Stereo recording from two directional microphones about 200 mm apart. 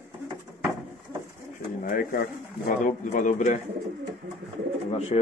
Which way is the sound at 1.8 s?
45° left (ahead or behind).